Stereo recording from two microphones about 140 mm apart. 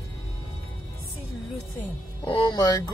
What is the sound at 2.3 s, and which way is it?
Speech, 30° left (ahead or behind).